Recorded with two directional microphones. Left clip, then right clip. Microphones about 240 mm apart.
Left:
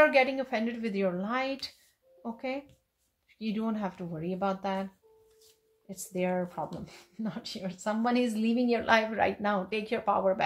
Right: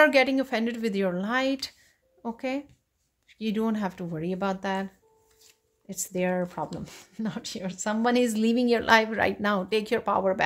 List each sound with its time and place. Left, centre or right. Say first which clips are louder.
0.0 s speech: right 3 dB; right
5.9 s speech: right 4 dB; right